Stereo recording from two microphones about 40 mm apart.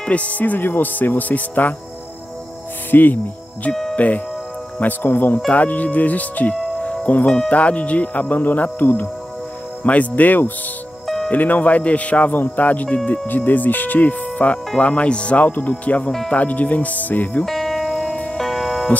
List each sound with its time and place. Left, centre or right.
0.0 s speech: left
2.9 s speech: left
3.9 s speech: left
4.7 s speech: left
5.5 s speech: left
6.5 s music: left
7.4 s speech: left
9.8 s speech: left
12.3 s speech: left
13.3 s speech: left
14.8 s speech: left
17.5 s music: centre
18.0 s music: left
18.4 s music: centre